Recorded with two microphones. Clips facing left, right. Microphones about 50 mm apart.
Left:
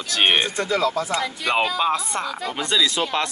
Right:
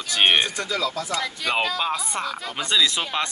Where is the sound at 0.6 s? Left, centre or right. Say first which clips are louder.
Left 5 dB; left.